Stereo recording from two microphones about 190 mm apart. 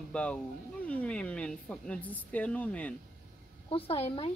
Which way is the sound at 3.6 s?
30° left (ahead or behind).